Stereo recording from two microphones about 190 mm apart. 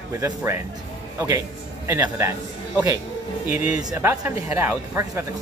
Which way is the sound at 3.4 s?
15° right (ahead or behind).